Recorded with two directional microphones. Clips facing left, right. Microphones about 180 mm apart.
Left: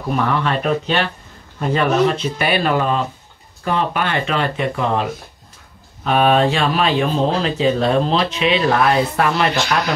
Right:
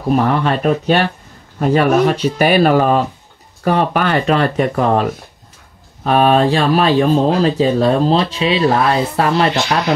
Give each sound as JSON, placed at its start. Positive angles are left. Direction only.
{"t": 0.1, "sound": "speech", "side_deg": -40}
{"t": 1.7, "sound": "speech", "side_deg": -10}
{"t": 2.2, "sound": "speech", "side_deg": -40}
{"t": 6.0, "sound": "speech", "side_deg": -40}